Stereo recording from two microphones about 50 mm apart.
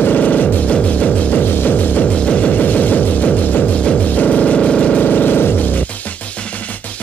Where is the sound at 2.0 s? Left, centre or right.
Centre.